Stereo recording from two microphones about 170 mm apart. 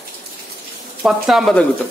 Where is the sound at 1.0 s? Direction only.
Centre (ahead or behind).